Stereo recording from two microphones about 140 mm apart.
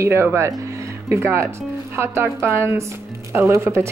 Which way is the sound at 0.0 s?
20° right (ahead or behind).